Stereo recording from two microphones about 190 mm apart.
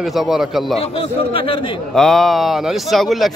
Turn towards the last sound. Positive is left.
turn(degrees=0)  # may be behind; listen again after turning